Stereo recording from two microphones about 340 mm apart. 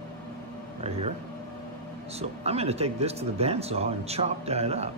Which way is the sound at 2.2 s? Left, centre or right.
Centre.